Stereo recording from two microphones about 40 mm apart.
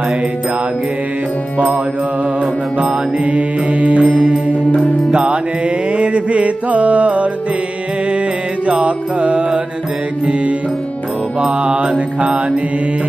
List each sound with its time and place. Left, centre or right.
2.4 s mantra: right
4.1 s music: right
5.9 s mantra: right
8.6 s music: right
11.4 s mantra: right